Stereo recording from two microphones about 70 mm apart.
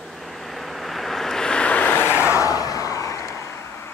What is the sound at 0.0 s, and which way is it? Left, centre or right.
Vehicle, centre.